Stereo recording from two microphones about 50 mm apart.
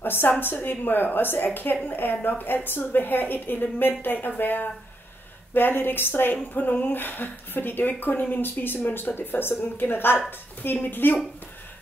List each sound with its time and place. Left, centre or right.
0.0 s a woman's voice: left
6.3 s a woman's voice: left